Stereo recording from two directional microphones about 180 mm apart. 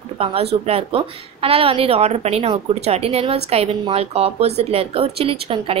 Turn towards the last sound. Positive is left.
turn(degrees=-30)  # may be behind; listen again after turning